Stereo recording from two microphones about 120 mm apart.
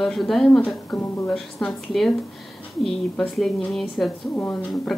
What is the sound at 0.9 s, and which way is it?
Speech, 15° left (ahead or behind).